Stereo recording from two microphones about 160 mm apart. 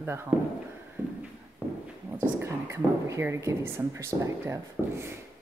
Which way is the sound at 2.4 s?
15° right (ahead or behind).